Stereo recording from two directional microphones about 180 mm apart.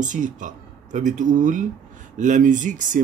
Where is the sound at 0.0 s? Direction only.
45° right (ahead or behind).